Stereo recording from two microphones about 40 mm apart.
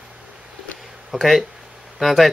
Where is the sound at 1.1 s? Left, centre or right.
Centre.